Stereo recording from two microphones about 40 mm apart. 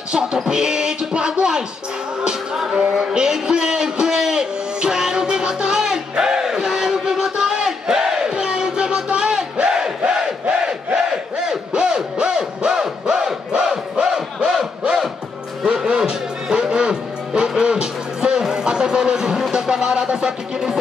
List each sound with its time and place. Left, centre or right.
0.1 s music: centre
2.7 s music: right
3.0 s a man's voice: centre
3.9 s music: centre
9.7 s battle cry: centre
11.4 s music: right
14.5 s crowd: centre
15.8 s music: centre
19.5 s speech: centre
20.2 s music: centre